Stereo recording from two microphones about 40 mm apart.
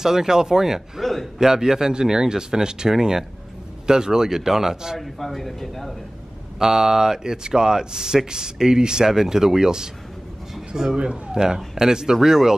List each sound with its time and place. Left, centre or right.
0.0 s speech: centre
4.9 s speech: centre
6.6 s speech: centre